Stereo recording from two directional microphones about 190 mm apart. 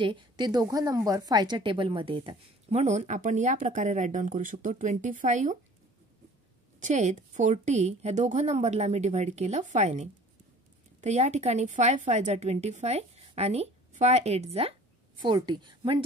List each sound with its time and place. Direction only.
0.0 s a woman's voice: 25° right (ahead or behind); by 5.6 s 40° right (ahead or behind)
6.8 s a woman's voice: 40° right (ahead or behind); by 16.0 s 25° right (ahead or behind)